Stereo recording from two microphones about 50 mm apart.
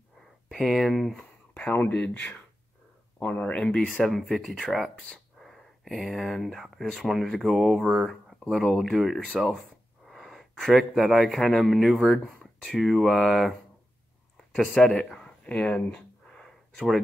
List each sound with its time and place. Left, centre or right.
0.5 s speech: centre
1.7 s speech: left; by 4.0 s centre
4.0 s speech: centre
15.4 s a sound: left; by 17.0 s centre